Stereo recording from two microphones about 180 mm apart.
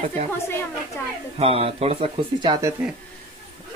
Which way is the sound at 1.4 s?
35° right (ahead or behind).